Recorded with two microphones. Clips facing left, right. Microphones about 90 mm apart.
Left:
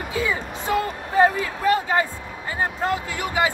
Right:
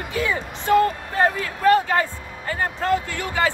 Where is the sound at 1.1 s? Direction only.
10° left (ahead or behind).